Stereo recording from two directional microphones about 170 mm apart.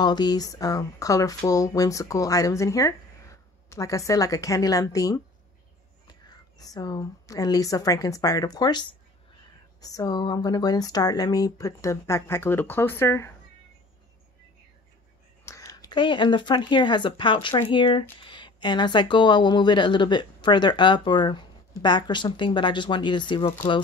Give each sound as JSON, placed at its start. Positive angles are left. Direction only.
{"t": 0.0, "sound": "a woman's voice", "side_deg": 25}
{"t": 15.4, "sound": "speech", "side_deg": 20}